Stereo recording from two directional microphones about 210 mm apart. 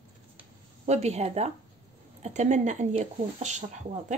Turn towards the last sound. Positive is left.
turn(degrees=-35)  # may be behind; listen again after turning